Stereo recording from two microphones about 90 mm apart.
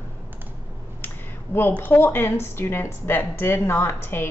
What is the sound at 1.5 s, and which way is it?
A woman's voice, 20° left (ahead or behind).